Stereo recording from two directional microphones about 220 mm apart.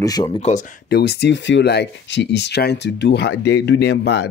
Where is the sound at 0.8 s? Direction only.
45° left (ahead or behind).